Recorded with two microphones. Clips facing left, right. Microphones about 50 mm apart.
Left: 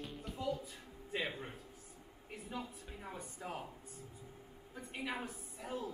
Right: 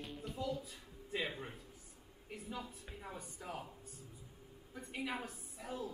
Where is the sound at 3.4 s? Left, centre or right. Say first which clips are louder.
Left 2 dB; centre.